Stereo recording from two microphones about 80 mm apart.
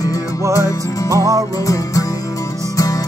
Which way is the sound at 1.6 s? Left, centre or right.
Left.